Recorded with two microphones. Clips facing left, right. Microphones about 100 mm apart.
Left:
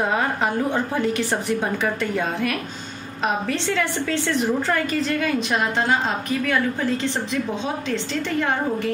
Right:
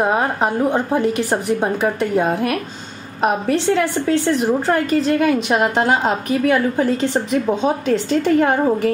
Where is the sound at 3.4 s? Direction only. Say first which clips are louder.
Right 6 dB; 35° right (ahead or behind).